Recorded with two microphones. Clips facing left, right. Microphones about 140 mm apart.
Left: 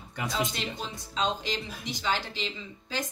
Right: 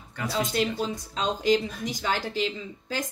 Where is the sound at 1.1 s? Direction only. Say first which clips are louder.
Right 6 dB; 45° right (ahead or behind).